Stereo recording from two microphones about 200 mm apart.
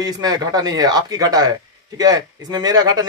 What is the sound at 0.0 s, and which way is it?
A man's voice, 20° right (ahead or behind).